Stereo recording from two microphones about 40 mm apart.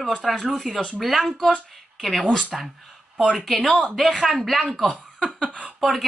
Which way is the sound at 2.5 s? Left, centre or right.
Centre.